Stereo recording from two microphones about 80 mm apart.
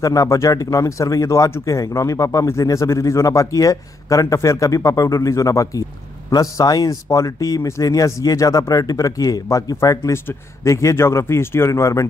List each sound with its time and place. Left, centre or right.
0.0 s speech: left